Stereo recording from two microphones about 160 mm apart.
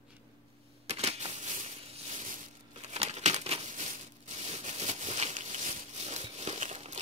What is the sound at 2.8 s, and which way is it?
Crumpling, 40° right (ahead or behind).